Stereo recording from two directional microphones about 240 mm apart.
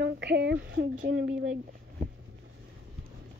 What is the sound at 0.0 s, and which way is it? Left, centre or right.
Speech, right.